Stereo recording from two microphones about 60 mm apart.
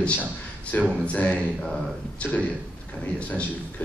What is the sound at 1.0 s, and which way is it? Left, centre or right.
Speech, left.